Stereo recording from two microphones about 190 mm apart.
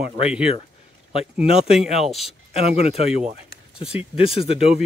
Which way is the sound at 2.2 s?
30° left (ahead or behind).